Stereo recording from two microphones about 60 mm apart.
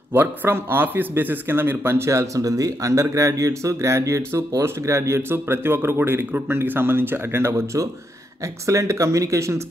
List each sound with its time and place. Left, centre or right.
0.1 s a man's voice: right
8.6 s speech: right